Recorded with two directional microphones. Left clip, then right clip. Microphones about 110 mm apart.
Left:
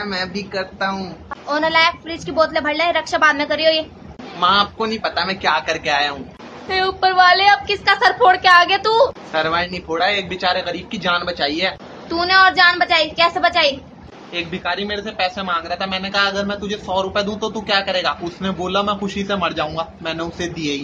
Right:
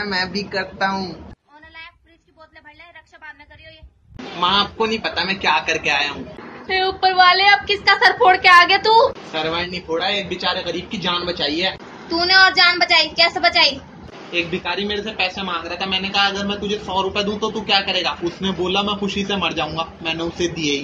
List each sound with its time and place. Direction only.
0.0 s a woman's voice: 10° left (ahead or behind)
4.4 s a woman's voice: 30° left (ahead or behind)
9.3 s a man's voice: 20° left (ahead or behind)